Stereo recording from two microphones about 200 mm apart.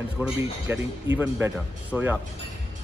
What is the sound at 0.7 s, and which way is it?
Speech, 10° right (ahead or behind).